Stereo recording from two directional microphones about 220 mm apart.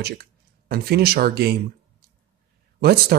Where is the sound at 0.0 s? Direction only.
45° right (ahead or behind).